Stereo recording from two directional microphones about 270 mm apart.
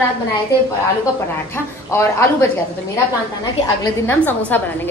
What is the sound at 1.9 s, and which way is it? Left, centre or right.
Speech, centre.